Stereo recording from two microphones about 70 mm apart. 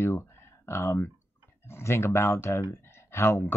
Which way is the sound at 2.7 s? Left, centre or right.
Left.